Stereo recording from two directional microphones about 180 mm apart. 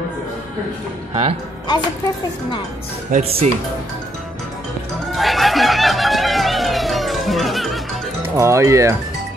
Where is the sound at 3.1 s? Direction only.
45° right (ahead or behind).